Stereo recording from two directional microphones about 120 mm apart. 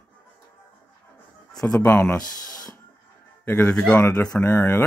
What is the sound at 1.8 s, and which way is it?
Speech, 15° left (ahead or behind).